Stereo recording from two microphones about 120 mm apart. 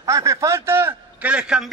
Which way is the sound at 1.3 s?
5° right (ahead or behind).